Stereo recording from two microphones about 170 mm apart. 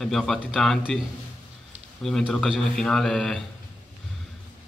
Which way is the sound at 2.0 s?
5° left (ahead or behind).